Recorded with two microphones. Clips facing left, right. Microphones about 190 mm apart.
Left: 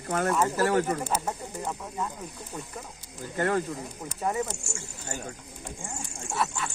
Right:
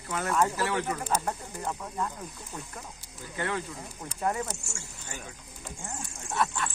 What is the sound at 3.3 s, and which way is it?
Speech, 45° left (ahead or behind).